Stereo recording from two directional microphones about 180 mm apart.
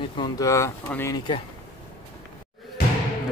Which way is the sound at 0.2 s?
15° left (ahead or behind).